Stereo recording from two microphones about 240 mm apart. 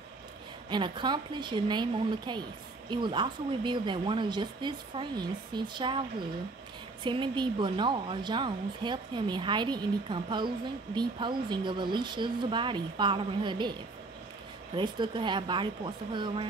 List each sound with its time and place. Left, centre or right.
0.7 s speech: centre
14.8 s speech: centre